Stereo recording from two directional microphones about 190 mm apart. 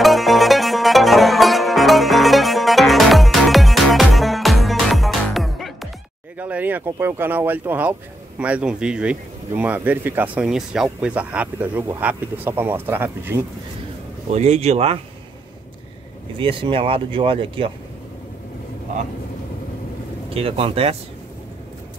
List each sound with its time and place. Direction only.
0.0 s music: centre (ahead or behind)
6.3 s speech: 10° right (ahead or behind)
14.3 s speech: 35° right (ahead or behind)
16.3 s speech: 25° right (ahead or behind)
20.3 s speech: 30° right (ahead or behind)